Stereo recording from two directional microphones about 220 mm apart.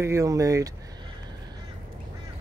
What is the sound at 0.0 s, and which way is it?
Speech, 15° right (ahead or behind).